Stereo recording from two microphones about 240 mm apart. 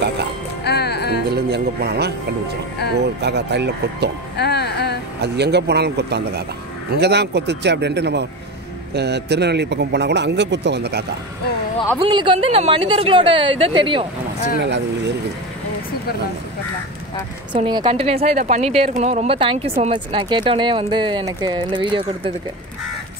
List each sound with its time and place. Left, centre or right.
0.7 s music: left
1.3 s a man's voice: right
3.2 s a man's voice: right
4.4 s music: left
5.2 s a man's voice: right
12.0 s speech: centre
14.6 s a man's voice: right
17.6 s speech: centre